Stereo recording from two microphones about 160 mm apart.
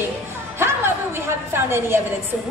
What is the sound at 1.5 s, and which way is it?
Speech, 15° right (ahead or behind).